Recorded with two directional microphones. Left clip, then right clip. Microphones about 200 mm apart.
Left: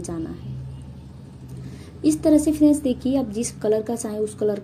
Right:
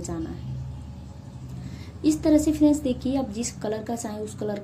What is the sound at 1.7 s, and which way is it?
A woman's voice, 15° left (ahead or behind).